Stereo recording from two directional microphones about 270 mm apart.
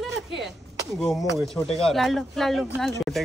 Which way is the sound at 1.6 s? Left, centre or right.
Left.